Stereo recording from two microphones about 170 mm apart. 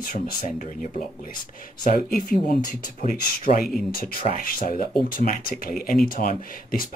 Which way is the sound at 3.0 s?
55° left (ahead or behind).